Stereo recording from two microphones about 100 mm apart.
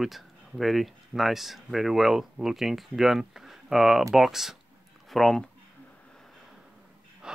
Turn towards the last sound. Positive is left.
turn(degrees=-5)  # may be behind; listen again after turning